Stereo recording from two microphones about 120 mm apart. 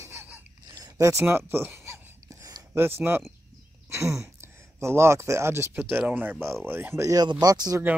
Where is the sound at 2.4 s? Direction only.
25° right (ahead or behind).